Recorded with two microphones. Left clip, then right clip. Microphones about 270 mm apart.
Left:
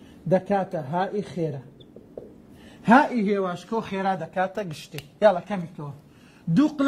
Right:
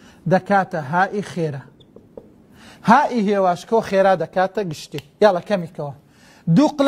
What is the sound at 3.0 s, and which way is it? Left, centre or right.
Speech, right.